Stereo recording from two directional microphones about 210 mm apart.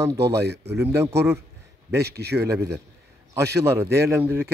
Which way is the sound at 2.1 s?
50° right (ahead or behind).